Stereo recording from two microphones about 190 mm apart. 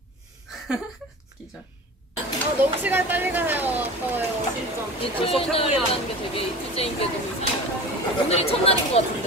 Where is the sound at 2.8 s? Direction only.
10° right (ahead or behind).